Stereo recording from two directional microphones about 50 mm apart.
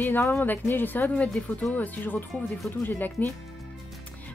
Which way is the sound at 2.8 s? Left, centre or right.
Left.